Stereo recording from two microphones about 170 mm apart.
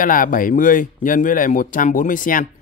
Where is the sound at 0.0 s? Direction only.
55° left (ahead or behind).